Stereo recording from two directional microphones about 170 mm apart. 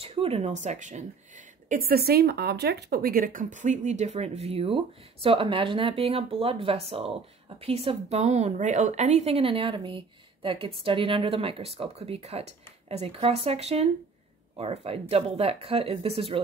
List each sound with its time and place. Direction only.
0.0 s a woman's voice: 35° right (ahead or behind)